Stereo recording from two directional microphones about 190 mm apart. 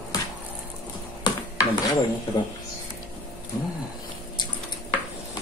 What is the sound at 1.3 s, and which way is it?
Dishes, 20° left (ahead or behind).